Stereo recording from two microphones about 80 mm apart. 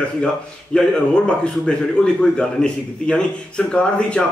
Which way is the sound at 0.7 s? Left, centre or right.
Centre.